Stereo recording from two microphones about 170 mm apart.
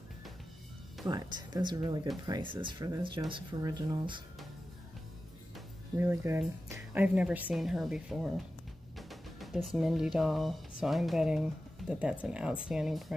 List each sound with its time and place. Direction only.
1.0 s speech: 25° right (ahead or behind)
5.9 s speech: 15° right (ahead or behind)